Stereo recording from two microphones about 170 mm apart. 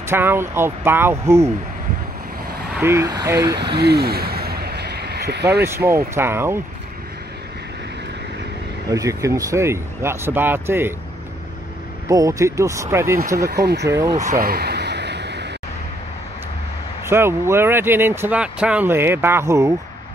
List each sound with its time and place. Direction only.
0.0 s speech: 15° right (ahead or behind)
2.8 s speech: 15° right (ahead or behind)
3.5 s vehicle: 75° right (ahead or behind)
5.6 s speech: 15° right (ahead or behind)
8.9 s speech: 20° right (ahead or behind)
12.1 s speech: 20° right (ahead or behind)
13.5 s speech: 70° right (ahead or behind)
13.8 s speech: 15° right (ahead or behind)
14.4 s a sound: 65° right (ahead or behind); by 15.4 s 85° right
17.0 s speech: 15° right (ahead or behind)